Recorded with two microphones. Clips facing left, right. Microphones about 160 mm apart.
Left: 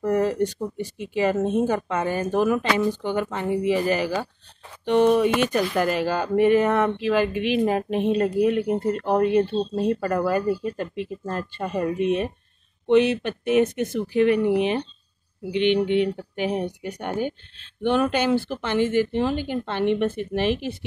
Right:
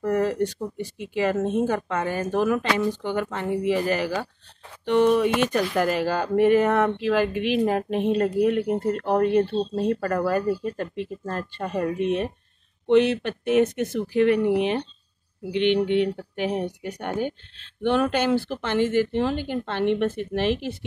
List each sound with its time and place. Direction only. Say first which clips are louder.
0.0 s speech: left 1 dB; 15° left (ahead or behind)
5.8 s speech: right 1 dB; centre (ahead or behind)